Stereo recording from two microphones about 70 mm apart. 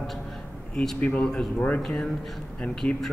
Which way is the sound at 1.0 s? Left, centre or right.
Centre.